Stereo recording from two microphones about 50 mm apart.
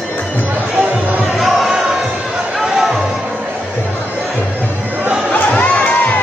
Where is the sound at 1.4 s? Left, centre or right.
Centre.